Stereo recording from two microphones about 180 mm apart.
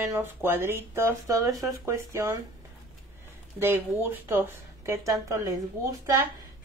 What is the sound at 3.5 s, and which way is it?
Speech, 15° right (ahead or behind).